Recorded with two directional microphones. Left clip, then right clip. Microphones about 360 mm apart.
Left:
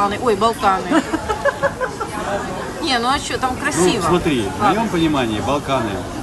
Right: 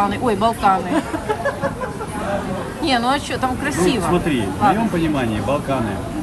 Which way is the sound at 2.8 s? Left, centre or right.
Centre.